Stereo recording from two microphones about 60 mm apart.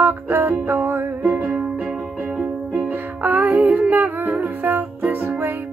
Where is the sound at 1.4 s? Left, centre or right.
Centre.